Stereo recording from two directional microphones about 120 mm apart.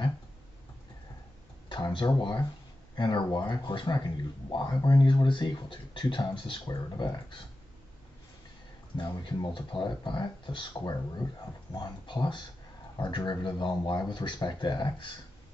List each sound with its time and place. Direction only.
1.7 s speech: 40° left (ahead or behind)
8.9 s speech: 35° left (ahead or behind)